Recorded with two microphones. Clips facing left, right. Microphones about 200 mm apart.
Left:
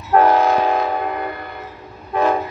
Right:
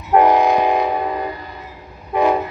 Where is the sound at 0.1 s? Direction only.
15° right (ahead or behind).